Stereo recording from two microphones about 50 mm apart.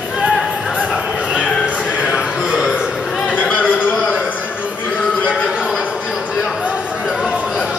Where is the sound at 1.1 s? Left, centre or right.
Right.